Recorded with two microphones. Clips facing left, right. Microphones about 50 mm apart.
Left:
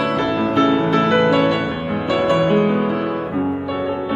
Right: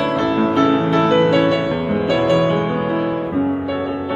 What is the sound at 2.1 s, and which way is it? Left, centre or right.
Music, centre.